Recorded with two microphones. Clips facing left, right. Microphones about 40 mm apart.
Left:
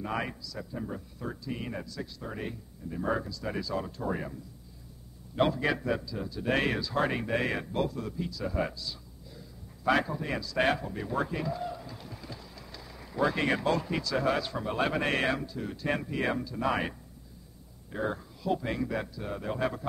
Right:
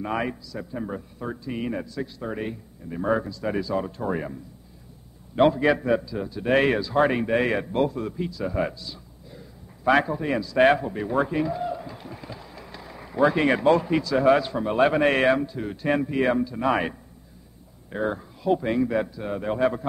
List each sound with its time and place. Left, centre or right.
0.0 s a man's voice: right
17.9 s a man's voice: right